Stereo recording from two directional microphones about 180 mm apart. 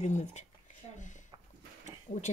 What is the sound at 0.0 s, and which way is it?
Speech, 40° left (ahead or behind).